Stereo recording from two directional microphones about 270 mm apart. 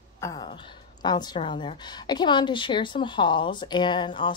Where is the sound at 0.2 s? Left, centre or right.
Centre.